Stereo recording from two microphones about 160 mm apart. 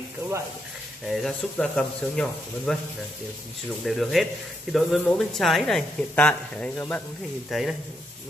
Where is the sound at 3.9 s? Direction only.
Centre (ahead or behind).